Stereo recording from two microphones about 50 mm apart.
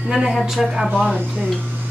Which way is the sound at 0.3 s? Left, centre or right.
Centre.